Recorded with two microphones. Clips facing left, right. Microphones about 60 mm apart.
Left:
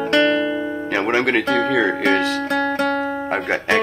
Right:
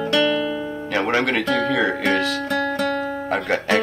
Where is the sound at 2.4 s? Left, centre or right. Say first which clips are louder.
Left 2 dB; left.